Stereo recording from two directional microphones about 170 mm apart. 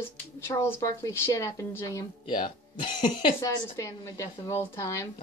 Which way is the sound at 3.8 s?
20° left (ahead or behind).